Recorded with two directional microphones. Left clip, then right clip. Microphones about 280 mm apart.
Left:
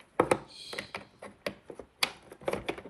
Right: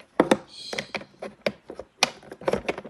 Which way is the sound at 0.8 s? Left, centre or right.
Right.